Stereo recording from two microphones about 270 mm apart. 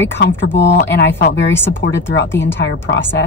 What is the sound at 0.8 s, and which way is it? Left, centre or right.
Speech, left.